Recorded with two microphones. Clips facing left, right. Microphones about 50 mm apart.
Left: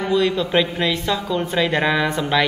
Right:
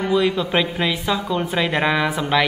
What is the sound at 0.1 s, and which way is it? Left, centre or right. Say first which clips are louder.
A woman's voice: left 1 dB; centre.